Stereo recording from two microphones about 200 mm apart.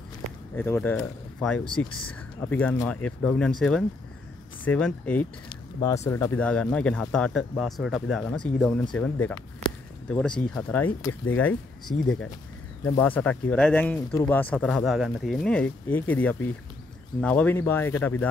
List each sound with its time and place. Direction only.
0.6 s speech: 10° left (ahead or behind)
5.5 s a sound: 15° left (ahead or behind)
6.0 s speech: 15° left (ahead or behind)
11.9 s speech: 35° left (ahead or behind)
12.8 s speech: 10° left (ahead or behind)